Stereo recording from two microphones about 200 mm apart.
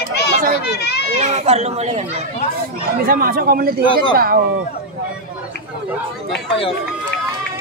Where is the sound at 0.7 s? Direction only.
55° left (ahead or behind).